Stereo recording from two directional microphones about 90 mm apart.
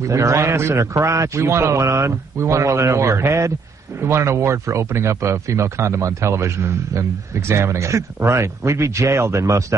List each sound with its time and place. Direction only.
0.0 s speech: 35° right (ahead or behind)